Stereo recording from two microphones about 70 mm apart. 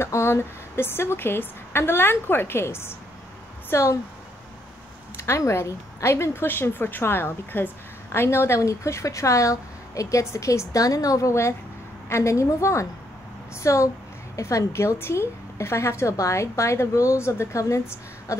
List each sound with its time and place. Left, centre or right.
0.0 s a woman's voice: left
5.1 s a woman's voice: left